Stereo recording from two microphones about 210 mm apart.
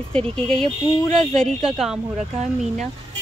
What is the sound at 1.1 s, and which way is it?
Speech, 5° left (ahead or behind).